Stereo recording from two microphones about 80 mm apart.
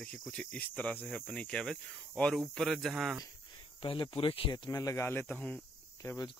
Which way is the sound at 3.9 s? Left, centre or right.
Left.